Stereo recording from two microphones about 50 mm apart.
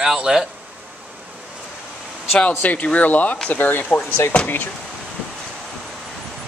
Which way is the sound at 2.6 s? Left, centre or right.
Left.